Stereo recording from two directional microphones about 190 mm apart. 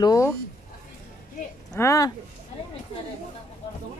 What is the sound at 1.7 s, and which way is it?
Speech, 15° left (ahead or behind).